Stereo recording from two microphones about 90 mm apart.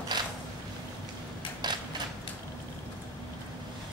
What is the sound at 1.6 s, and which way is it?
Mechanisms, 50° right (ahead or behind).